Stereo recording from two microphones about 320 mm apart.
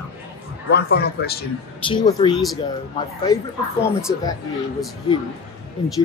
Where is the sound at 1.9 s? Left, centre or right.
Centre.